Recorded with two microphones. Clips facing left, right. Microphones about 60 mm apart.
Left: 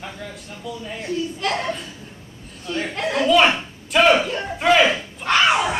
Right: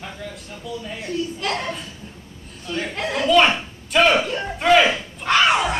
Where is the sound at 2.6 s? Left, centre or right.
Centre.